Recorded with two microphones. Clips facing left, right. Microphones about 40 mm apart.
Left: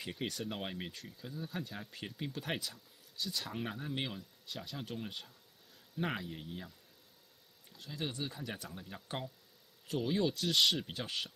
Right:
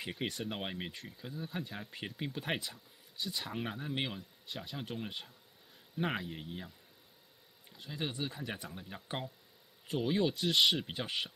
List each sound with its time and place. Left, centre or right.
0.0 s speech: centre
7.7 s speech: centre